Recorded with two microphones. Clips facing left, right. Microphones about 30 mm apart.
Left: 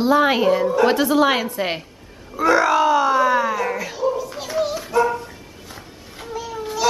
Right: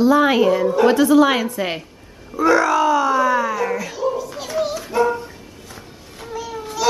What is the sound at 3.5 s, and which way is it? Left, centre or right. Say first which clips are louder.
Music: right 1 dB; centre.